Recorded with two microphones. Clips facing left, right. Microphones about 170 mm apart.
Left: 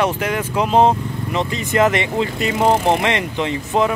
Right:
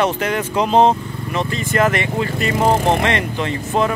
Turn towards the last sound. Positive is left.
turn(degrees=15)  # may be behind; listen again after turning